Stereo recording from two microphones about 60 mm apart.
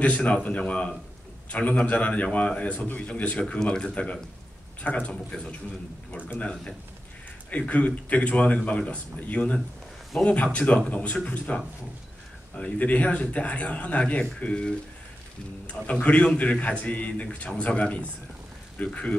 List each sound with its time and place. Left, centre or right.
0.0 s speech: left
5.3 s speech: centre
6.1 s speech: left
15.9 s speech: left